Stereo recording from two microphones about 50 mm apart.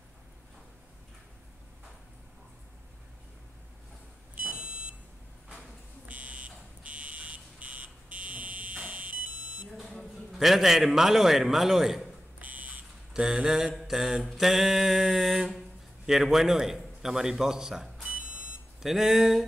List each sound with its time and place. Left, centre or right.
4.4 s a sound: right
6.0 s buzzer: right
9.8 s a man's voice: centre
12.4 s buzzer: right
13.1 s mantra: centre
13.7 s mantra: centre
16.1 s a man's voice: centre
18.0 s smoke detector: right
18.8 s mantra: centre